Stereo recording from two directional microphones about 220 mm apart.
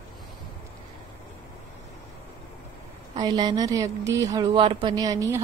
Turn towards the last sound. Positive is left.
turn(degrees=-15)  # may be behind; listen again after turning